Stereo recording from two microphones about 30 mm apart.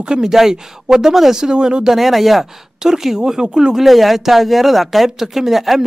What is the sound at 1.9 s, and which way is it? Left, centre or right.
Speech, centre.